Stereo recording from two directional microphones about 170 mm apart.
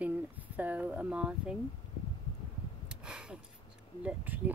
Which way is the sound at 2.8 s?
5° right (ahead or behind).